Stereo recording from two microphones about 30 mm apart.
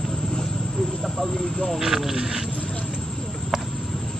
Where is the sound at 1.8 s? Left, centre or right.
Centre.